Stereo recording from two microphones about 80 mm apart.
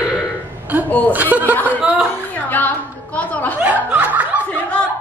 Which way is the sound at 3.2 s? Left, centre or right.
Centre.